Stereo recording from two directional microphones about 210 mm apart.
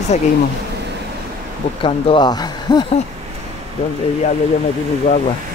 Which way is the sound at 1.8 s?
25° left (ahead or behind).